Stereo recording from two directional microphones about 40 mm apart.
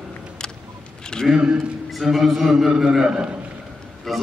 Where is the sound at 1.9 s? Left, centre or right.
Centre.